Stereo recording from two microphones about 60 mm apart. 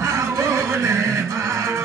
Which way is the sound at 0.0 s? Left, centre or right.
Right.